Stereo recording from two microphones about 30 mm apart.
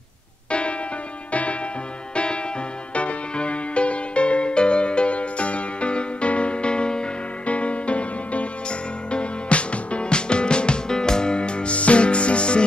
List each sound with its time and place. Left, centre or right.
0.5 s music: left
1.3 s music: left
2.1 s music: left
7.4 s music: left